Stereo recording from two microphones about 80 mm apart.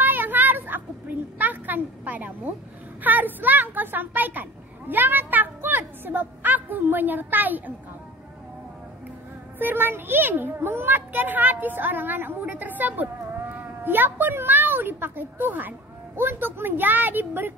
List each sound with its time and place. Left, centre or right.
0.0 s a sound: right
3.0 s speech: right
9.6 s a child's voice: right